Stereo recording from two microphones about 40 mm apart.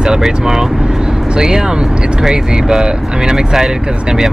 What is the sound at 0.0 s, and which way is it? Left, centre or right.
Speech, centre.